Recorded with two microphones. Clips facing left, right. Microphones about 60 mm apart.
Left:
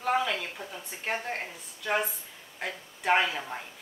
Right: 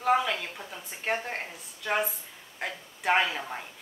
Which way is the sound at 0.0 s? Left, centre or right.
Centre.